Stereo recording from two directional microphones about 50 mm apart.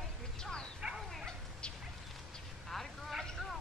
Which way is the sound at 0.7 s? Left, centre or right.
Centre.